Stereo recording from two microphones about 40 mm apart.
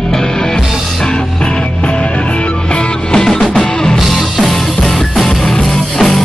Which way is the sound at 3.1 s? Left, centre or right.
Centre.